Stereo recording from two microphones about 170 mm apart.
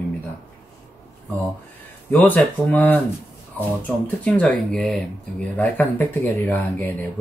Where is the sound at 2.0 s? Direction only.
10° left (ahead or behind).